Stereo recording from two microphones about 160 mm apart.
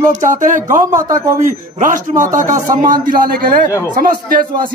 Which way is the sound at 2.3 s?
55° right (ahead or behind).